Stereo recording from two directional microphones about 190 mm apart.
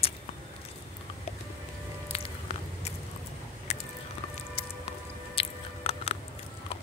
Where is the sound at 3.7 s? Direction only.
35° left (ahead or behind).